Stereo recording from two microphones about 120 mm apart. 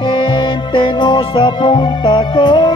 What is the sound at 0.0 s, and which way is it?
Music, 40° left (ahead or behind).